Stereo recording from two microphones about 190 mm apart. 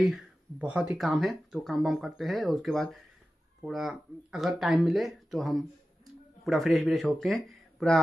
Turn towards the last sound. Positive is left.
turn(degrees=0)  # may be behind; listen again after turning